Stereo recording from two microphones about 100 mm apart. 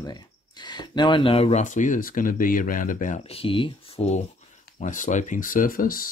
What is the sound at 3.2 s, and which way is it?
Speech, 70° left (ahead or behind).